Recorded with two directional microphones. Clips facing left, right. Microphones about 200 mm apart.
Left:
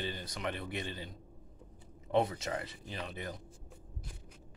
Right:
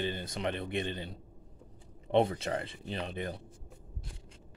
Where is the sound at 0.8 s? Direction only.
65° right (ahead or behind).